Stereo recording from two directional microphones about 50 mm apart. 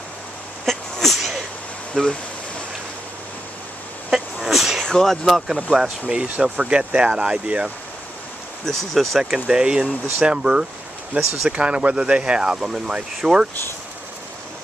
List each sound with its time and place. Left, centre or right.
0.7 s a sound: centre
2.0 s speech: centre
4.1 s sneeze: centre
4.8 s speech: centre
5.7 s speech: centre
6.4 s speech: centre
8.6 s speech: centre
9.2 s speech: centre